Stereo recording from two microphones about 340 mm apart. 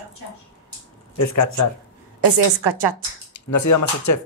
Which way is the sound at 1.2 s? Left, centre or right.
Left.